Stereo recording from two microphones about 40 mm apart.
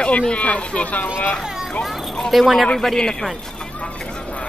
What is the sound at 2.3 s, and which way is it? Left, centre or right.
Speech, centre.